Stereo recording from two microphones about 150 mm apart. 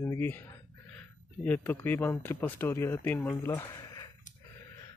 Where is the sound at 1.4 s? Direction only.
10° left (ahead or behind).